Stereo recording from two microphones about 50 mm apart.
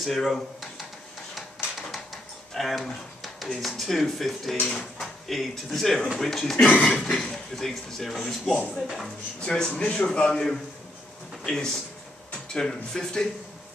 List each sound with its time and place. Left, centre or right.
0.0 s speech: centre
2.5 s speech: centre
6.5 s speech: left
6.9 s speech: centre
9.4 s speech: centre
10.3 s speech: centre